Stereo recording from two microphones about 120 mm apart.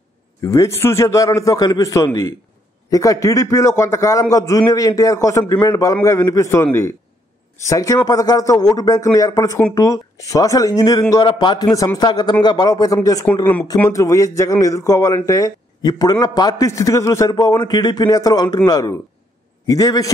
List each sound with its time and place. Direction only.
0.5 s a man's voice: 25° left (ahead or behind)